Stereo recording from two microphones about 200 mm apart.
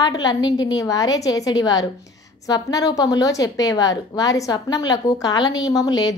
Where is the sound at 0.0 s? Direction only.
20° left (ahead or behind).